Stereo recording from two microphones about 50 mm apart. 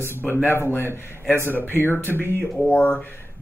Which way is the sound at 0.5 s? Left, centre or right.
Left.